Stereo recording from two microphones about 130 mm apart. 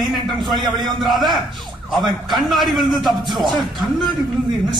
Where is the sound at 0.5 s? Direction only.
35° right (ahead or behind).